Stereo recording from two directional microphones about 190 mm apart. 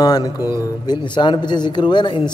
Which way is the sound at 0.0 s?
20° left (ahead or behind).